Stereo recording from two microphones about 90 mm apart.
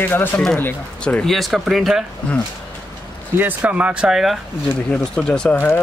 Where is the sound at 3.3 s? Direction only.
15° right (ahead or behind).